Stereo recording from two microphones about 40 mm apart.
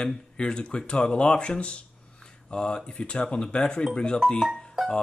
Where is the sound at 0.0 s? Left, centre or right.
Left.